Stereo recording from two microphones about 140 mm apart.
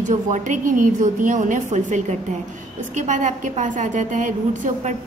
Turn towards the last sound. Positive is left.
turn(degrees=-60)  # may be behind; listen again after turning